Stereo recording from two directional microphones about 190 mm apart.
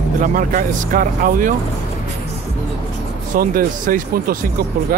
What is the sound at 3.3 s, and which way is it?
Speech, 50° right (ahead or behind).